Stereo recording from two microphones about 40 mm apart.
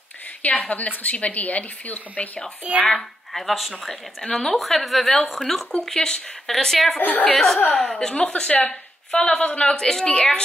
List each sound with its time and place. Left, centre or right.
0.4 s a woman's voice: left
2.6 s speech: right
3.3 s speech: centre
4.2 s speech: centre
4.6 s speech: centre
7.0 s a woman's voice: left
7.3 s speech: centre
8.1 s speech: left